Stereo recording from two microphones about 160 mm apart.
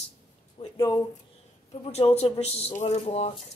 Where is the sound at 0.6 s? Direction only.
20° left (ahead or behind).